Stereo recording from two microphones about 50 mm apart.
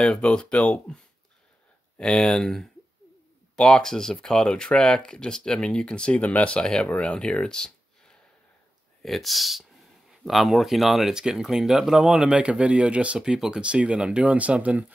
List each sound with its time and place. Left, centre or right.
0.0 s speech: centre
3.5 s speech: centre
6.6 s speech: centre; by 13.2 s right
13.2 s speech: centre